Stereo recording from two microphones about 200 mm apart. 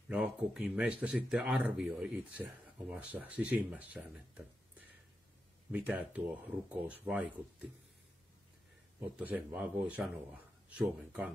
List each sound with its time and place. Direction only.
0.1 s speech: 5° right (ahead or behind)
5.7 s speech: 5° right (ahead or behind)
9.0 s speech: 10° right (ahead or behind)